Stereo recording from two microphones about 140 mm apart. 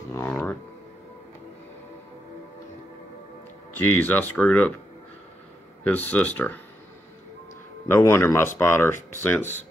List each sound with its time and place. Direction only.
0.1 s music: 15° left (ahead or behind)
3.7 s speech: 15° left (ahead or behind)
5.9 s speech: 10° left (ahead or behind)
7.9 s speech: 15° left (ahead or behind)